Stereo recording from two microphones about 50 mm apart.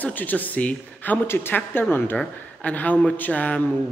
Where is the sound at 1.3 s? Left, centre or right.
Left.